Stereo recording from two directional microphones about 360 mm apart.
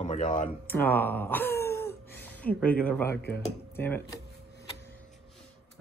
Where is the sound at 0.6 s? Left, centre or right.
Centre.